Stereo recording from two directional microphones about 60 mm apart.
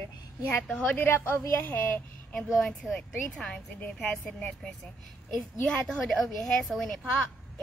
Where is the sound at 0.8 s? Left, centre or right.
Left.